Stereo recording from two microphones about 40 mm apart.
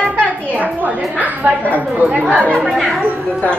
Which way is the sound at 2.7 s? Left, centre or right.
Centre.